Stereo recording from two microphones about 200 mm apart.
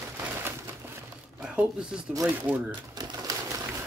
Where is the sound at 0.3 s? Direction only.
10° right (ahead or behind).